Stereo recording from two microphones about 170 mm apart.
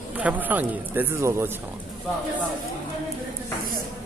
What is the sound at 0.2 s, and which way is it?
Speech, 10° right (ahead or behind).